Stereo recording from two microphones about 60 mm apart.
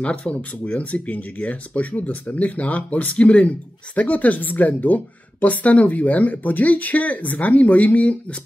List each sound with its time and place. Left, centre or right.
0.0 s speech: centre